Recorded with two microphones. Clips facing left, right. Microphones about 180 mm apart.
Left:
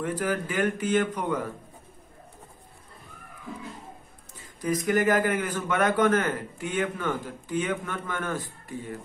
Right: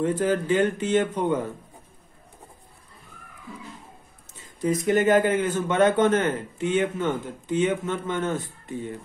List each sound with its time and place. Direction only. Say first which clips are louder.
0.0 s speech: right 5 dB; 25° right (ahead or behind)
4.4 s speech: right 3 dB; 25° right (ahead or behind)